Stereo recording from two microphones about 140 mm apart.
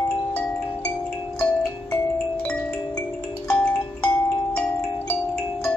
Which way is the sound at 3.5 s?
10° left (ahead or behind).